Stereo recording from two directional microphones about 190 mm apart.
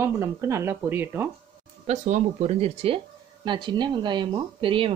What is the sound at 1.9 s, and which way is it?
Speech, 35° right (ahead or behind).